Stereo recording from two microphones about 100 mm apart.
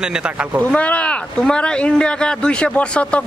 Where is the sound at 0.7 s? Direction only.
15° left (ahead or behind).